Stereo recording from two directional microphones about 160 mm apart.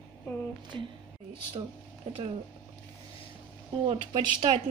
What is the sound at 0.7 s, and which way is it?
Speech, 35° right (ahead or behind).